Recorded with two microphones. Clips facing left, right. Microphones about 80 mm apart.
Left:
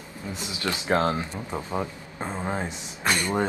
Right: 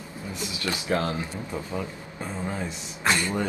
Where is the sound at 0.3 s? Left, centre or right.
Left.